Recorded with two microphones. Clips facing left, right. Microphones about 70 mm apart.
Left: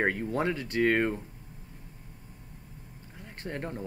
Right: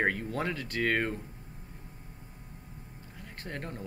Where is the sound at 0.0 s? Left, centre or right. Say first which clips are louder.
Left 2 dB; left.